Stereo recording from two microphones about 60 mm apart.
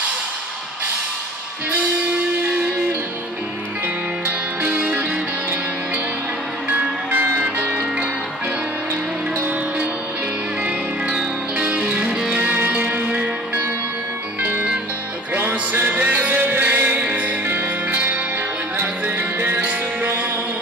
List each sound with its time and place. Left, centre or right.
4.6 s music: right
6.7 s music: right
11.5 s music: right
14.4 s music: right
15.9 s music: right
17.5 s music: right